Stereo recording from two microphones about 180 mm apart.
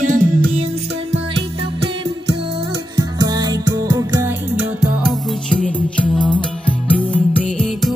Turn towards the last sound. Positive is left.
turn(degrees=5)  # may be behind; listen again after turning